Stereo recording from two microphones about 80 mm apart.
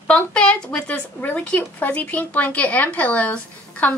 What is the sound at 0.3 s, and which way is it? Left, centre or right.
Speech, centre.